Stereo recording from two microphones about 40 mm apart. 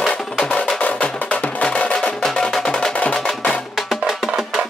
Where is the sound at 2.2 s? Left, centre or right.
Centre.